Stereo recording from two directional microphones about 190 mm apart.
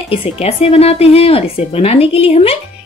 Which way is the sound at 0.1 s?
30° left (ahead or behind).